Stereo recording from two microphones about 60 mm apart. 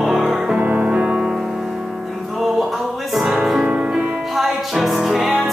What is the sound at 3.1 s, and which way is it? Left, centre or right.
Music, centre.